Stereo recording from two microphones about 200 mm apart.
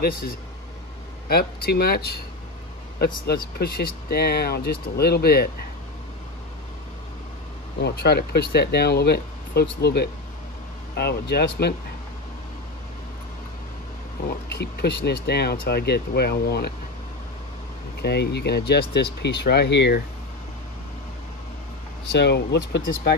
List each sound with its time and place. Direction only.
0.0 s speech: 45° left (ahead or behind)
3.5 s speech: 50° left (ahead or behind)
7.8 s speech: 50° left (ahead or behind)
14.6 s speech: 55° left (ahead or behind)
18.0 s speech: 55° left (ahead or behind)
22.1 s speech: 55° left (ahead or behind)